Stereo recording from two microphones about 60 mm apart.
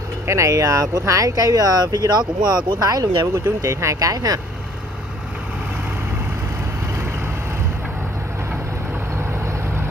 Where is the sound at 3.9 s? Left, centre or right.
Right.